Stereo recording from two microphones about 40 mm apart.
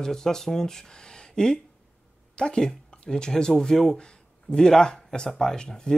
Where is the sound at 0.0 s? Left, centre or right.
Centre.